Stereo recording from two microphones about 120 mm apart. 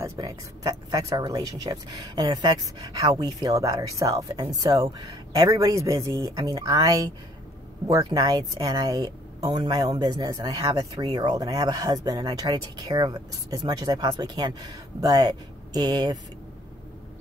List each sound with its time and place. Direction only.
0.0 s speech: 25° right (ahead or behind)